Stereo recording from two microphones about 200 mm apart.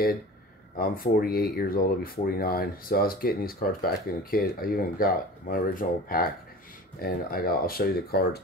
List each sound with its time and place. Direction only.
0.7 s speech: 45° left (ahead or behind)